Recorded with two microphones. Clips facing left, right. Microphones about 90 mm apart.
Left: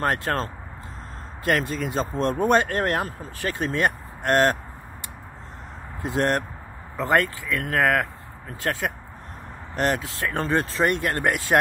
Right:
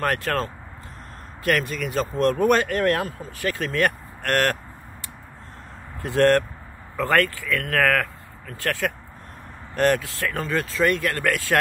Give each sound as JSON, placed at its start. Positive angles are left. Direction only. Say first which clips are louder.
{"t": 0.0, "sound": "speech", "louder": "even", "side_deg": 25}
{"t": 6.0, "sound": "speech", "louder": "right 5 dB", "side_deg": 20}